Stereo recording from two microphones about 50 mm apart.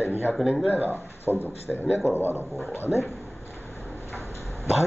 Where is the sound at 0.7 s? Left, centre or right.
Right.